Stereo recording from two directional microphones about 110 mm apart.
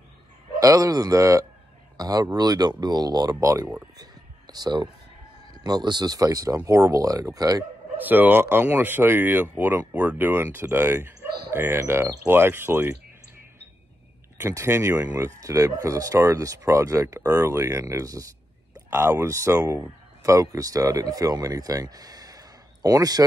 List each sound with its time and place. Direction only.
0.6 s speech: 35° right (ahead or behind)
4.0 s a sound: 35° right (ahead or behind)
5.5 s speech: 40° right (ahead or behind)
8.0 s speech: 15° right (ahead or behind)
14.4 s speech: 25° right (ahead or behind)